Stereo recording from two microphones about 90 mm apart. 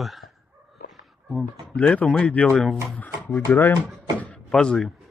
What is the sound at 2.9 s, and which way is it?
Speech, 15° left (ahead or behind).